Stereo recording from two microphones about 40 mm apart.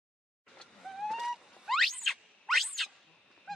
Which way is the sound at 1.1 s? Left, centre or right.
Centre.